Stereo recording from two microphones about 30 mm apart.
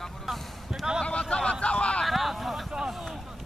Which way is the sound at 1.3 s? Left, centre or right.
Left.